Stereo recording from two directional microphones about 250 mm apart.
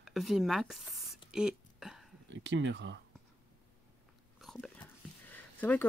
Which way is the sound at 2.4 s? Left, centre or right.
Right.